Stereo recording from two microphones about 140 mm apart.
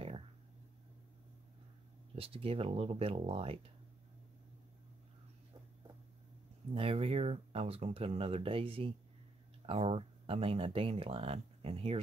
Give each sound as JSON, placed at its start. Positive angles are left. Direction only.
{"t": 2.1, "sound": "speech", "side_deg": -40}
{"t": 6.7, "sound": "speech", "side_deg": -45}